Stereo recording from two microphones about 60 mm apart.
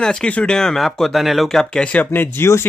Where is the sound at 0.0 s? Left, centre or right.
Centre.